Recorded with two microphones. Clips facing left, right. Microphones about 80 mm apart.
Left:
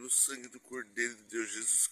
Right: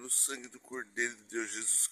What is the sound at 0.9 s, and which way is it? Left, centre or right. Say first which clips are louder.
Speech: right 1 dB; right.